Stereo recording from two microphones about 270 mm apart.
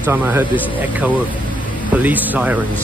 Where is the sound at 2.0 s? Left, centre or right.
Centre.